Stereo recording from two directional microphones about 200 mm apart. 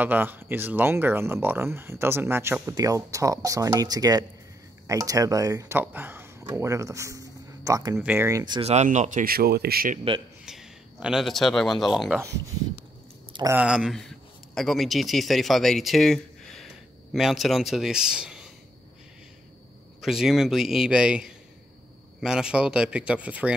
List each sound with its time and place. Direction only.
0.0 s speech: 10° right (ahead or behind); by 9.9 s 50° right (ahead or behind)
10.4 s speech: 5° right (ahead or behind)
13.3 s a sound: 20° right (ahead or behind)
13.6 s a man's voice: 5° right (ahead or behind)
20.0 s speech: centre (ahead or behind)